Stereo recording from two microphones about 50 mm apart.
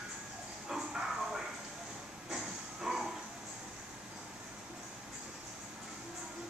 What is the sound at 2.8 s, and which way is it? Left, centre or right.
Dog, centre.